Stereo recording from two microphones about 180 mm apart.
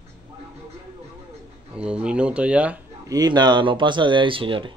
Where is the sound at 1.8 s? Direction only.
5° right (ahead or behind).